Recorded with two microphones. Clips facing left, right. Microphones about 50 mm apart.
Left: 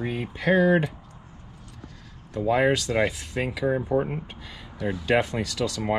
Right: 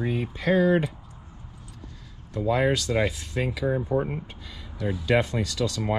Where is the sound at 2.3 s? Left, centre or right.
Left.